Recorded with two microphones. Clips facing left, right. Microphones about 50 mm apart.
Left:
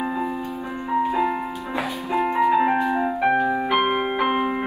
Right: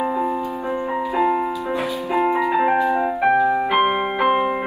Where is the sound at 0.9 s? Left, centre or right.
Right.